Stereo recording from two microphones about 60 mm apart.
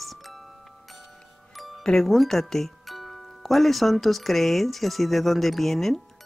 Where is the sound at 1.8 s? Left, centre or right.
Centre.